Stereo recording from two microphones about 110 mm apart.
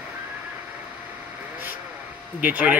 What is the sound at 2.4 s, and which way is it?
Speech, 15° right (ahead or behind).